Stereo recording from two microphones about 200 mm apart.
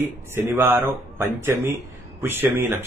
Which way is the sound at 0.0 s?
10° right (ahead or behind).